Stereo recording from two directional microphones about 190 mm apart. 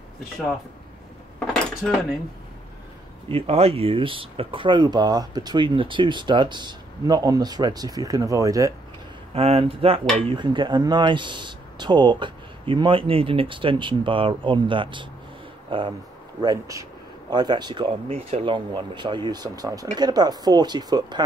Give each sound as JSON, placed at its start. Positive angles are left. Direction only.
{"t": 1.5, "sound": "cutlery", "side_deg": 0}
{"t": 3.3, "sound": "speech", "side_deg": -30}
{"t": 9.3, "sound": "speech", "side_deg": -30}